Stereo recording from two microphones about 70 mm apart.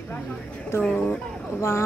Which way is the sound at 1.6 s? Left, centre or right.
Left.